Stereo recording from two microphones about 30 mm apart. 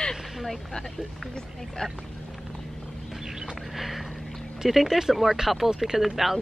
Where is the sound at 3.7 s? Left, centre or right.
Centre.